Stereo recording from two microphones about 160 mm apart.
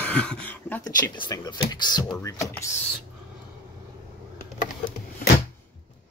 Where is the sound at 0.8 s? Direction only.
25° left (ahead or behind).